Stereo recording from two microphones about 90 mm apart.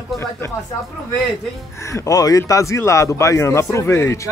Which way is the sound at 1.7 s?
35° left (ahead or behind).